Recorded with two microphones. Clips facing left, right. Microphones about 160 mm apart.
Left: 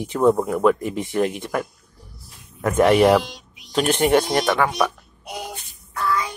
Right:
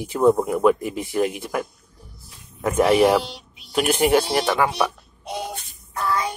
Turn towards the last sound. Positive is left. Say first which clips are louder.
# even
turn(degrees=-30)  # may be behind; listen again after turning